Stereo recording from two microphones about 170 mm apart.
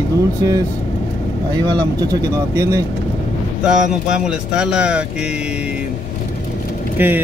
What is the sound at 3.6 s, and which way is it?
Speech, 5° right (ahead or behind).